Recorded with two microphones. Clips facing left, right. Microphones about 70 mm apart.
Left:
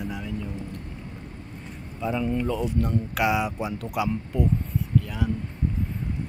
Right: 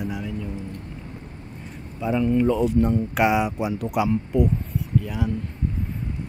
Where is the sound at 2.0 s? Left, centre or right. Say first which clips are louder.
Right 6 dB; centre.